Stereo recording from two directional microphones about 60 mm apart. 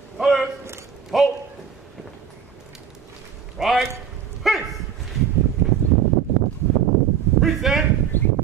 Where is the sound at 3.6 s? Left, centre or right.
Centre.